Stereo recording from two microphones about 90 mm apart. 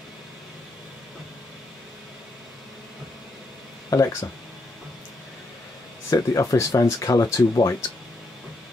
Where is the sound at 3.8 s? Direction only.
35° left (ahead or behind).